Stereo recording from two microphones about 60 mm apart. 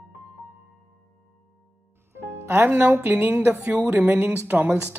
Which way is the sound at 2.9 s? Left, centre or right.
Right.